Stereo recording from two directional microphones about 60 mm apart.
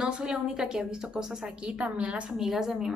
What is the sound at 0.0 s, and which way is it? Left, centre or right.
A woman's voice, centre.